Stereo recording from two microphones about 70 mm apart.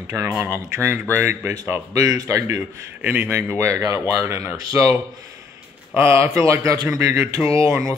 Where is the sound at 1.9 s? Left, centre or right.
Right.